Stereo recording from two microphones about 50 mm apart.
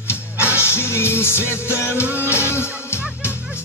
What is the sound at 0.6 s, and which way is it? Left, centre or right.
Music, left.